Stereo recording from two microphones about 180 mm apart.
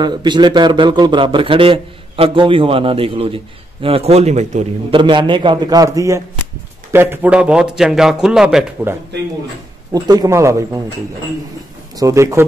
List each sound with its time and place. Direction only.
0.0 s a man's voice: 25° right (ahead or behind); by 4.6 s 40° right (ahead or behind)
4.9 s a man's voice: 25° right (ahead or behind); by 8.9 s 5° right (ahead or behind)
9.9 s a man's voice: 20° right (ahead or behind)
12.0 s speech: 15° right (ahead or behind)